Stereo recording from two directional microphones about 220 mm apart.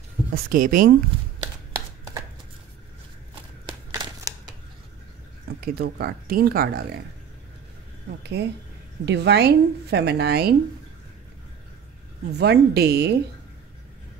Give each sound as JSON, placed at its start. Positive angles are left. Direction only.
{"t": 0.3, "sound": "speech", "side_deg": -40}
{"t": 4.0, "sound": "a sound", "side_deg": -20}
{"t": 5.8, "sound": "a woman's voice", "side_deg": -45}
{"t": 8.2, "sound": "a woman's voice", "side_deg": -50}
{"t": 12.3, "sound": "a woman's voice", "side_deg": -50}